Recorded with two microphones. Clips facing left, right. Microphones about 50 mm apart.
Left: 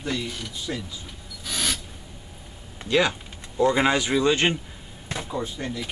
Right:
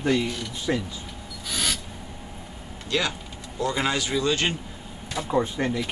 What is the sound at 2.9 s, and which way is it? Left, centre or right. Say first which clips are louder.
Speech: left 5 dB; centre.